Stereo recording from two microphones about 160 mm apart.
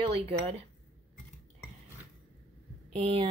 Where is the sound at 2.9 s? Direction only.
40° right (ahead or behind).